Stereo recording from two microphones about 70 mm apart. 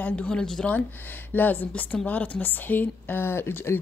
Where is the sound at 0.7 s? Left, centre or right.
Left.